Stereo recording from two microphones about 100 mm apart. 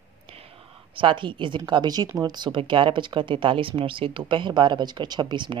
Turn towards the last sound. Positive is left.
turn(degrees=-50)  # may be behind; listen again after turning